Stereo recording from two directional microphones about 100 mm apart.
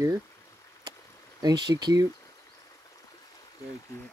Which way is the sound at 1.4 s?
40° right (ahead or behind).